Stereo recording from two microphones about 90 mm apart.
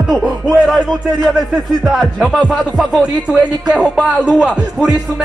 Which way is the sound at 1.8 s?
5° right (ahead or behind).